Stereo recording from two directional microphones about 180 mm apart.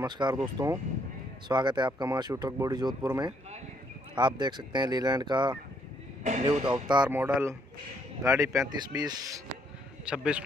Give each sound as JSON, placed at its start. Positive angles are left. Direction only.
{"t": 0.0, "sound": "speech", "side_deg": -25}
{"t": 7.1, "sound": "speech", "side_deg": -10}
{"t": 10.0, "sound": "a man's voice", "side_deg": -5}